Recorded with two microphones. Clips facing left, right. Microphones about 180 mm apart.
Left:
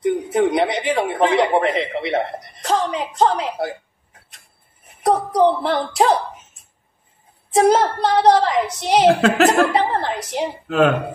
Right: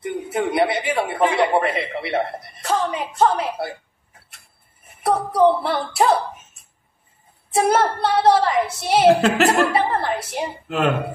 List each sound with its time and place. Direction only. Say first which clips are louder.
0.0 s speech: left 6 dB; 20° left (ahead or behind)
5.0 s speech: left 1 dB; 15° left (ahead or behind)
7.5 s a woman's voice: left 3 dB; 20° left (ahead or behind)
10.7 s a man's voice: left 5 dB; centre (ahead or behind)